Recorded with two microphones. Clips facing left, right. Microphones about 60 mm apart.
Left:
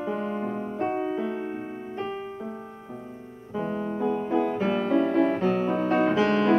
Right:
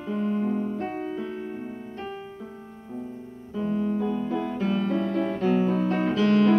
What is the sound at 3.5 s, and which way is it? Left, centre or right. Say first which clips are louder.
Music: right 2 dB; left.